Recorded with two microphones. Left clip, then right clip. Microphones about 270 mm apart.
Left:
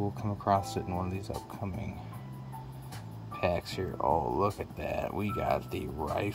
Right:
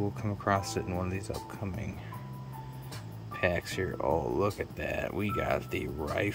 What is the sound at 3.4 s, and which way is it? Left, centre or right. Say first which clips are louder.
Speech: right 1 dB; centre.